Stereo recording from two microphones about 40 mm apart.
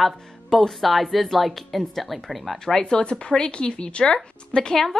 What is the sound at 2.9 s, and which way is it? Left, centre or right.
A woman's voice, left.